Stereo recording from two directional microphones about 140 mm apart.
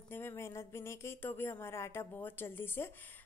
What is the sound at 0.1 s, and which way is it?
Speech, 20° left (ahead or behind).